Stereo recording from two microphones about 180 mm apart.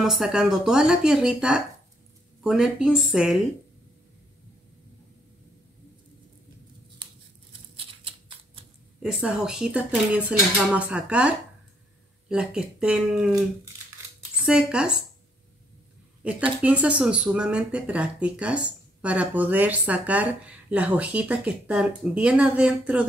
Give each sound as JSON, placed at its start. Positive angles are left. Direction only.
{"t": 0.0, "sound": "speech", "side_deg": -5}
{"t": 7.7, "sound": "typewriter", "side_deg": -30}
{"t": 9.0, "sound": "speech", "side_deg": -5}
{"t": 14.4, "sound": "speech", "side_deg": -5}
{"t": 16.3, "sound": "speech", "side_deg": -5}